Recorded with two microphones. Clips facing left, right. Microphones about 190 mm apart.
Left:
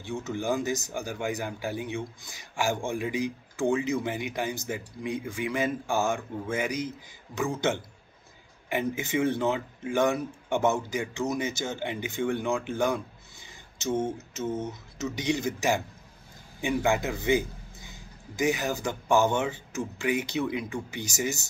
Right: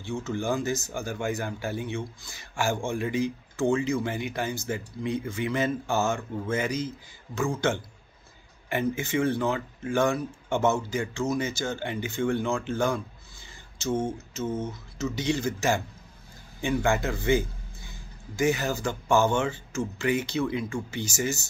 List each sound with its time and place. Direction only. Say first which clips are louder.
0.0 s speech: right 1 dB; 20° left (ahead or behind)